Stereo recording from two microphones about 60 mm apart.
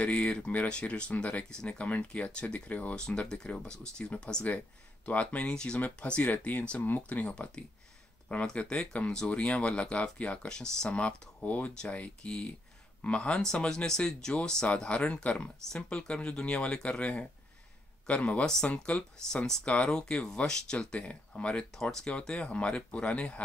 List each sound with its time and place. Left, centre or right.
0.0 s speech: centre
3.0 s speech: centre